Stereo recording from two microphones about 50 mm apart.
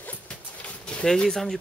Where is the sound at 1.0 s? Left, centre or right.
Centre.